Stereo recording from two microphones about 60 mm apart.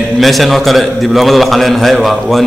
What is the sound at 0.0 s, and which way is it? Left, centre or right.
A man's voice, centre.